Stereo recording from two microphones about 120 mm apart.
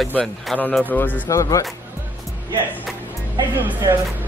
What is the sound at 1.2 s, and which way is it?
Speech, 25° left (ahead or behind).